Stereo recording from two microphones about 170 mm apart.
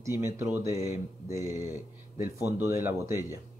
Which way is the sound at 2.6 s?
15° right (ahead or behind).